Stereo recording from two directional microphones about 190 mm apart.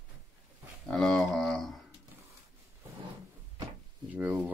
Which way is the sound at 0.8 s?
5° left (ahead or behind).